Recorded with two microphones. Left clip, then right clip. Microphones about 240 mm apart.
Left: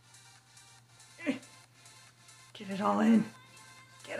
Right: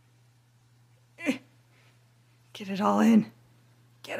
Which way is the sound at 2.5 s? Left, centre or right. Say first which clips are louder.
Right 4 dB; right.